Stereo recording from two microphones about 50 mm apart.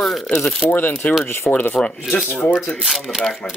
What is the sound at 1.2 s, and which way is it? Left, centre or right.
Speech, left.